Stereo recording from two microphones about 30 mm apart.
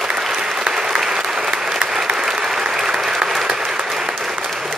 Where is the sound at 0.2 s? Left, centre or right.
Centre.